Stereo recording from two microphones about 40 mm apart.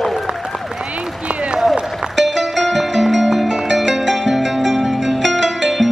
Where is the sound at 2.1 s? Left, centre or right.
Centre.